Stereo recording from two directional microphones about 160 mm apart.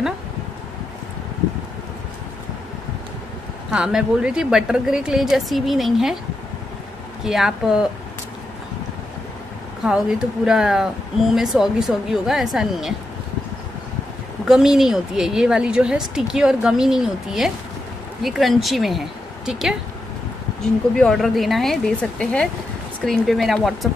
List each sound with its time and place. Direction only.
3.7 s speech: 5° right (ahead or behind)
7.2 s speech: centre (ahead or behind)
9.8 s speech: 5° right (ahead or behind)
14.4 s speech: centre (ahead or behind)
20.9 s speech: 5° left (ahead or behind)